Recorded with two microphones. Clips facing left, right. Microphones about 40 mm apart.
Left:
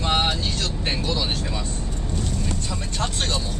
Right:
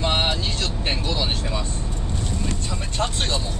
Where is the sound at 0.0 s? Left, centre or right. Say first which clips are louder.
Even; centre.